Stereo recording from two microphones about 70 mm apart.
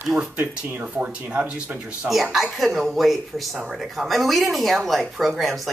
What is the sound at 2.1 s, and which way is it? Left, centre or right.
Speech, centre.